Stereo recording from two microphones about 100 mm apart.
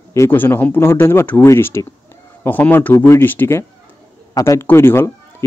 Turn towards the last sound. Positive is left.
turn(degrees=25)  # may be behind; listen again after turning